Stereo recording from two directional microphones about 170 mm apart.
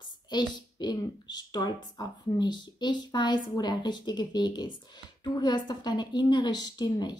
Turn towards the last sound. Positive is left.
turn(degrees=25)  # may be behind; listen again after turning